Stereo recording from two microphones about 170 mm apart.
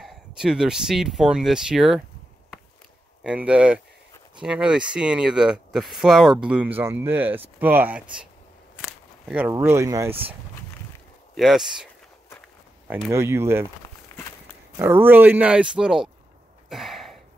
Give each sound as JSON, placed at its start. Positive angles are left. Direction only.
{"t": 0.0, "sound": "speech", "side_deg": -5}
{"t": 3.3, "sound": "speech", "side_deg": -5}
{"t": 11.3, "sound": "speech", "side_deg": 0}
{"t": 13.1, "sound": "speech", "side_deg": -15}
{"t": 14.8, "sound": "speech", "side_deg": -10}
{"t": 16.6, "sound": "a sound", "side_deg": 0}